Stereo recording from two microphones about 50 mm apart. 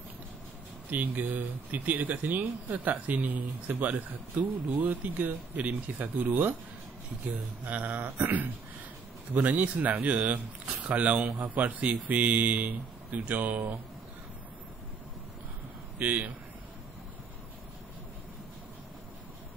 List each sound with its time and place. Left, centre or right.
0.8 s speech: right
7.6 s a sound: right
9.3 s speech: right
16.0 s speech: right